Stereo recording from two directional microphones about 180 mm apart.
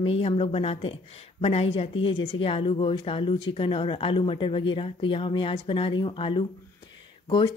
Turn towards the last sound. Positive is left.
turn(degrees=30)  # may be behind; listen again after turning